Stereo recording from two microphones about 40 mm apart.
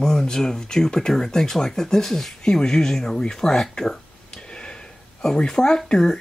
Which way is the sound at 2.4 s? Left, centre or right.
Centre.